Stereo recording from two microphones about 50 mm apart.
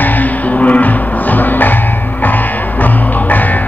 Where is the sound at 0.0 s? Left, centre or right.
Left.